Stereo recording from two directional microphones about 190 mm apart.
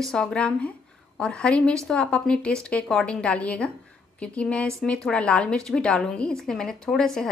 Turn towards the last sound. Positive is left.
turn(degrees=0)  # may be behind; listen again after turning